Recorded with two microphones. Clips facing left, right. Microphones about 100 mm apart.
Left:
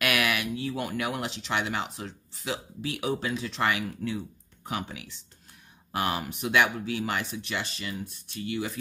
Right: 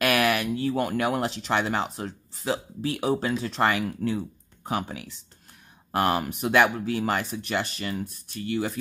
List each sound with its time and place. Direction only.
0.0 s speech: 35° right (ahead or behind)